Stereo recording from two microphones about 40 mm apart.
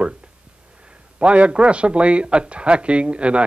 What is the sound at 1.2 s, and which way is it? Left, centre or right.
A man's voice, right.